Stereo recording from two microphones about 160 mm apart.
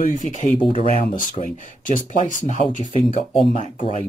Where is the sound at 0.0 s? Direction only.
50° left (ahead or behind).